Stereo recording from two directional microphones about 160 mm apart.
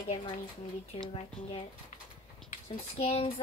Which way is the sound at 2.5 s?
35° left (ahead or behind).